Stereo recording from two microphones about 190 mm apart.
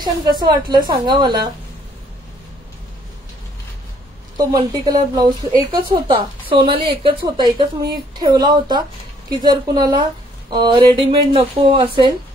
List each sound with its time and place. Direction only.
0.0 s a woman's voice: 20° right (ahead or behind)
4.4 s a woman's voice: 20° right (ahead or behind)